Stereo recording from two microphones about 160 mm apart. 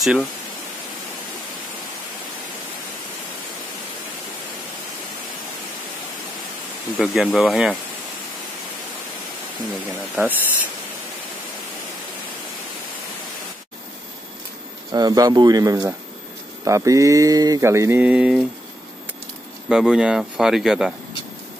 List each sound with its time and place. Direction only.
0.0 s speech: centre (ahead or behind)
7.0 s speech: 5° right (ahead or behind)
10.1 s speech: 10° right (ahead or behind)
14.9 s mantra: 25° right (ahead or behind); by 18.4 s 5° right (ahead or behind)
19.7 s speech: 5° right (ahead or behind)